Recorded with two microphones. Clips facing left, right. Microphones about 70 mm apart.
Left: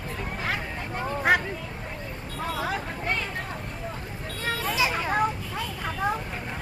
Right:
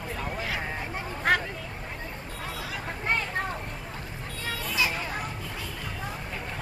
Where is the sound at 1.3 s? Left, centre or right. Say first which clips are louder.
Left 2 dB; centre.